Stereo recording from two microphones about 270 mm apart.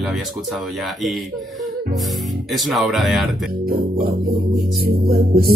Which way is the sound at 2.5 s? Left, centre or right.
Centre.